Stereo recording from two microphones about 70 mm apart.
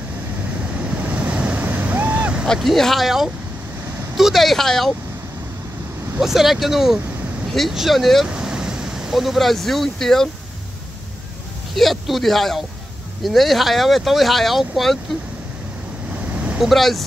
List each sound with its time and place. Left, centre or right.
0.7 s waves: centre
2.4 s speech: centre
6.2 s speech: centre
8.3 s speech: centre
11.7 s speech: centre
16.3 s vehicle: centre
16.6 s speech: centre